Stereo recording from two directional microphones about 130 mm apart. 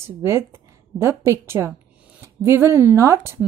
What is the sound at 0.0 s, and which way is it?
A woman's voice, 20° right (ahead or behind).